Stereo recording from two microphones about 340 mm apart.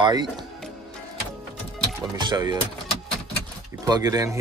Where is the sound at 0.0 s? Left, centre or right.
Centre.